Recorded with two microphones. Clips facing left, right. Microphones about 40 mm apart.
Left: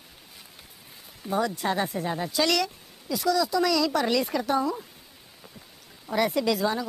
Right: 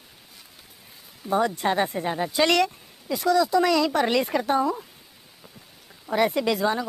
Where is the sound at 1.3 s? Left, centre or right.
Centre.